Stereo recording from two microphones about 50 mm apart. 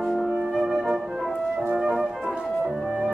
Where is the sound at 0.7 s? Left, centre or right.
Centre.